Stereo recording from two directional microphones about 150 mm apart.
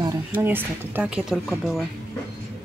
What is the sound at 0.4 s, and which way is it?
Speech, 15° right (ahead or behind).